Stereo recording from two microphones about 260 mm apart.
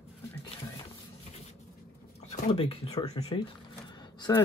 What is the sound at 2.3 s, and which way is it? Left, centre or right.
Speech, left.